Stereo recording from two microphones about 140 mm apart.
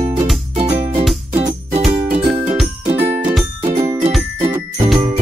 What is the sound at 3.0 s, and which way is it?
Music, 15° right (ahead or behind).